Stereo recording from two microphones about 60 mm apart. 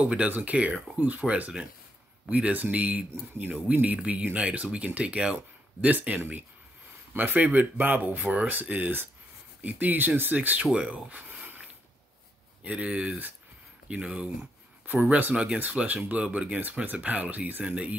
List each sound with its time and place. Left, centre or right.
0.0 s speech: centre
2.5 s speech: right
7.2 s speech: right
10.8 s a sound: right
12.6 s speech: right
14.9 s speech: right